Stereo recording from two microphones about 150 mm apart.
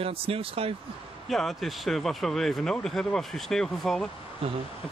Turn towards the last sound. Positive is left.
turn(degrees=0)  # may be behind; listen again after turning